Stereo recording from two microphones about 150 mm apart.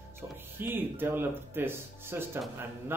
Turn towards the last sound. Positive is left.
turn(degrees=-15)  # may be behind; listen again after turning